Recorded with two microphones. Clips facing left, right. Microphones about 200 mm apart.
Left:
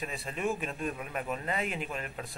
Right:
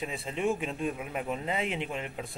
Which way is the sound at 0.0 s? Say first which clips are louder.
Right 3 dB; 20° right (ahead or behind).